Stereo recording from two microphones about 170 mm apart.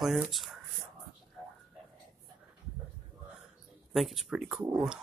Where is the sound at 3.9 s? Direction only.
Centre (ahead or behind).